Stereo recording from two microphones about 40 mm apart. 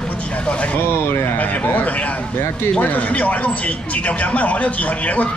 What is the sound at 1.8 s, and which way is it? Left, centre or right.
Speech, left.